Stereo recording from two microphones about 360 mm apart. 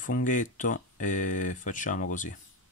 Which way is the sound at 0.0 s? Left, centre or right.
Left.